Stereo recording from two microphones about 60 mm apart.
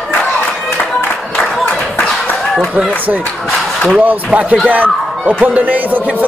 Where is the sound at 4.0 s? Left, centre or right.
Right.